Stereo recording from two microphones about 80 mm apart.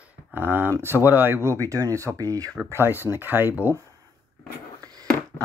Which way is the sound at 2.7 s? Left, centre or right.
Right.